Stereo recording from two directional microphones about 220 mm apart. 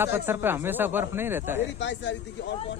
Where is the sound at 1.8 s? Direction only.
55° left (ahead or behind).